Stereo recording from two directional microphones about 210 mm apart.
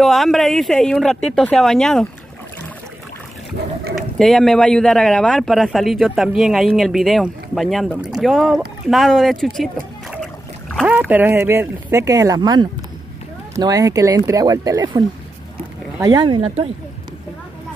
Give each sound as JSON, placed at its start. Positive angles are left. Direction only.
{"t": 0.0, "sound": "speech", "side_deg": 0}
{"t": 3.9, "sound": "speech", "side_deg": 0}
{"t": 10.9, "sound": "speech", "side_deg": -5}